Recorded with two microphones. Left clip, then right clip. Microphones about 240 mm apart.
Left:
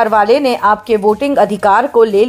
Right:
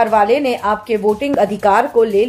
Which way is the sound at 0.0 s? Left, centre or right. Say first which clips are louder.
Left 3 dB; centre.